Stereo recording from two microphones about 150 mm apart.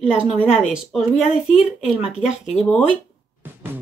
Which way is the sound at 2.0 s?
45° left (ahead or behind).